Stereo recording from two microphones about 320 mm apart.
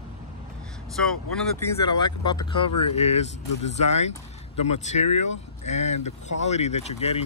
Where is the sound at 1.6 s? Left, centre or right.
Centre.